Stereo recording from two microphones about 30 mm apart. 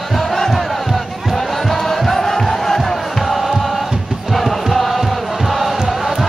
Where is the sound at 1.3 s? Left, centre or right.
Centre.